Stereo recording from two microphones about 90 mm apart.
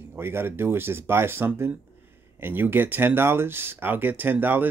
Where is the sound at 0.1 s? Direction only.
25° right (ahead or behind).